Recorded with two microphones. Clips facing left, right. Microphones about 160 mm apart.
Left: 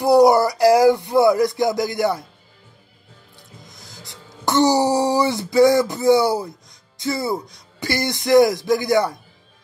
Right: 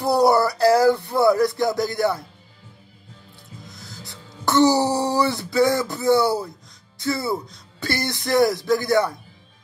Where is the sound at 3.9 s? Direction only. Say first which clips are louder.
Right 1 dB; 15° left (ahead or behind).